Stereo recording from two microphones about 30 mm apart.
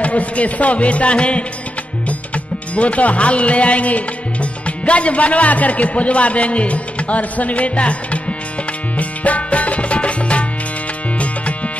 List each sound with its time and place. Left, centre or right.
0.0 s speech: left
2.0 s music: left